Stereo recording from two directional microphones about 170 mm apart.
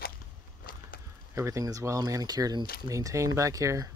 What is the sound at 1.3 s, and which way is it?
Speech, 20° right (ahead or behind).